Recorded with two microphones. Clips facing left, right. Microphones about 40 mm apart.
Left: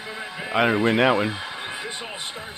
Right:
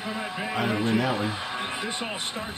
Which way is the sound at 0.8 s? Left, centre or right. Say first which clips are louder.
Left 6 dB; left.